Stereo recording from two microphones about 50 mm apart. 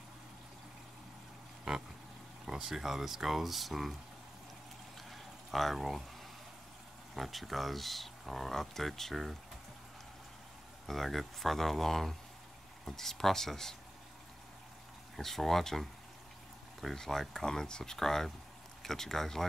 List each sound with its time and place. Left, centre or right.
1.7 s speech: centre
5.1 s pour: centre
7.2 s speech: centre
10.9 s speech: centre
15.1 s speech: centre